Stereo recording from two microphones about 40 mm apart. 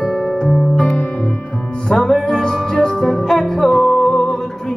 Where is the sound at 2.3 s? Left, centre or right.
Centre.